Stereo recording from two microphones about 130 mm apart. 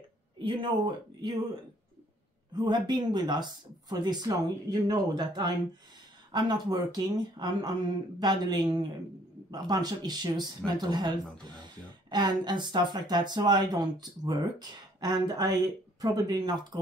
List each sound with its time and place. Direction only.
0.4 s speech: 40° right (ahead or behind)
2.5 s speech: 35° right (ahead or behind)